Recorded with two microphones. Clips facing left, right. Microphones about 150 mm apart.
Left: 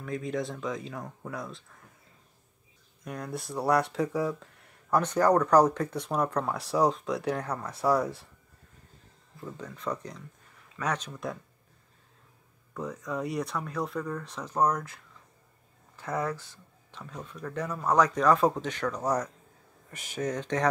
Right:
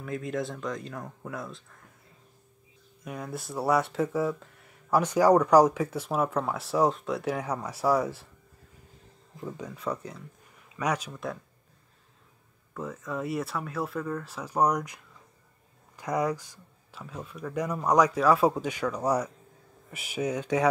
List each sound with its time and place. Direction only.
0.0 s speech: centre (ahead or behind)
3.1 s speech: centre (ahead or behind)
9.4 s speech: 15° right (ahead or behind)
12.7 s speech: centre (ahead or behind)
16.0 s speech: 15° right (ahead or behind)